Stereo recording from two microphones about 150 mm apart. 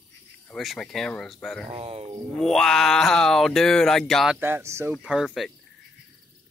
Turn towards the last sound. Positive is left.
turn(degrees=0)  # may be behind; listen again after turning